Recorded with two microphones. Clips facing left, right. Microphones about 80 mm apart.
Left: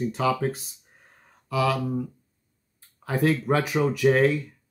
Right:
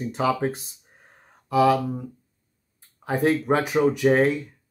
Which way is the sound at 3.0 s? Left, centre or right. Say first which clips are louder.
Right 2 dB; right.